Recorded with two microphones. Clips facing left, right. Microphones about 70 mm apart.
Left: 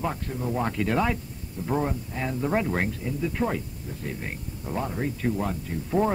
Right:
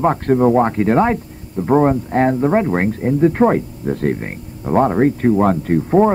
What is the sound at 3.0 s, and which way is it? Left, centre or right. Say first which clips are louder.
Speech: right 14 dB; right.